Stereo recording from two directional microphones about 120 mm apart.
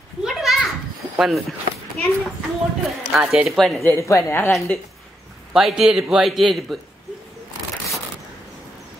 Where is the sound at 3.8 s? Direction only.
25° left (ahead or behind).